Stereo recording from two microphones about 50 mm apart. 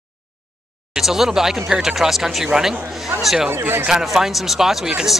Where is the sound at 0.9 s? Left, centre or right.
Centre.